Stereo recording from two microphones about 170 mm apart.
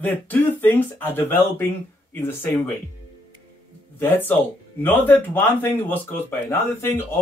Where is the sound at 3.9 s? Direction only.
10° left (ahead or behind).